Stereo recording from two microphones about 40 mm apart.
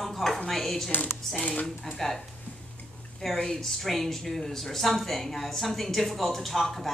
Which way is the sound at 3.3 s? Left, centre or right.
Centre.